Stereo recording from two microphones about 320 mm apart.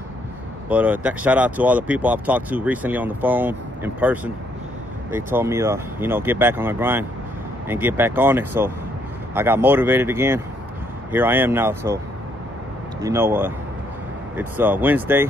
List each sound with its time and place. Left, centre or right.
0.7 s speech: centre
13.0 s speech: centre